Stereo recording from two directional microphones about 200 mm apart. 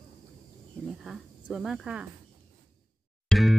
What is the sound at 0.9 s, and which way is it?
Speech, centre (ahead or behind).